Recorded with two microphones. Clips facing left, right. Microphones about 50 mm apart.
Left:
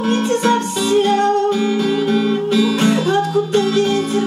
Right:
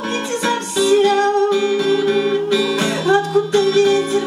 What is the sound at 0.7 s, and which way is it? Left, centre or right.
Music, left.